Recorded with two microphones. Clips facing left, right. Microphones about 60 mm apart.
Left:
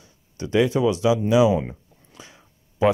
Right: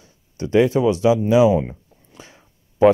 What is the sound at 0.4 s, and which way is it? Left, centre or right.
Speech, right.